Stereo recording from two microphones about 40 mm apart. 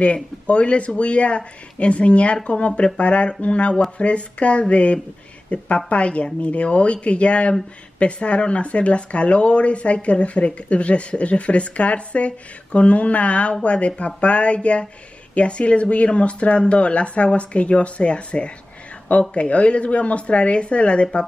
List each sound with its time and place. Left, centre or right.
0.0 s speech: left